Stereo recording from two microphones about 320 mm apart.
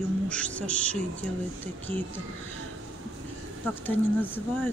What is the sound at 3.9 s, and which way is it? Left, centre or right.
Speech, centre.